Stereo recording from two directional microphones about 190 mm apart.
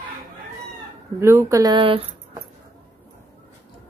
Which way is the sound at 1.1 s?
15° right (ahead or behind).